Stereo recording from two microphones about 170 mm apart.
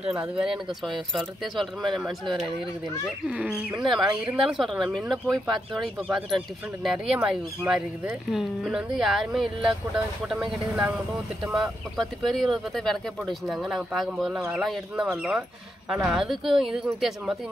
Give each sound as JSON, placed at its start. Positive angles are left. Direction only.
{"t": 0.0, "sound": "speech", "side_deg": -5}
{"t": 3.3, "sound": "speech", "side_deg": -5}